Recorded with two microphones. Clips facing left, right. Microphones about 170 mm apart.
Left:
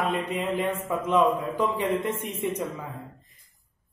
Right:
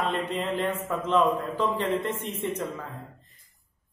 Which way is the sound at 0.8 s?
10° left (ahead or behind).